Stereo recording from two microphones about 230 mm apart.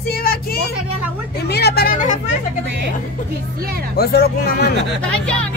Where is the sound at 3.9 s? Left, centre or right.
Left.